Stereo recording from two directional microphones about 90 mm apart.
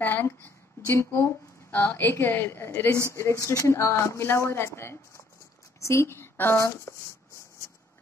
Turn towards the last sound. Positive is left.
turn(degrees=25)  # may be behind; listen again after turning